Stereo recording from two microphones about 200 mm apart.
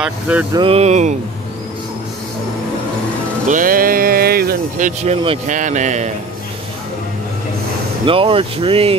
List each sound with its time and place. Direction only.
0.0 s speech: 5° right (ahead or behind)
0.6 s speech: 30° right (ahead or behind)
3.4 s speech: 45° right (ahead or behind)
5.5 s speech: 40° right (ahead or behind)
8.0 s speech: 25° right (ahead or behind)